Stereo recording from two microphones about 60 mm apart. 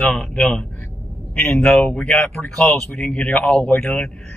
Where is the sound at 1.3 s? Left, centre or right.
Left.